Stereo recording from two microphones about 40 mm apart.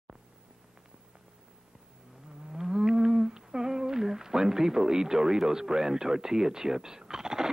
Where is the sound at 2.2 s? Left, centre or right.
Centre.